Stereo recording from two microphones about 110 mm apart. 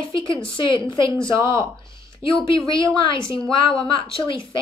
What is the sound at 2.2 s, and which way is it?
A woman's voice, 50° left (ahead or behind).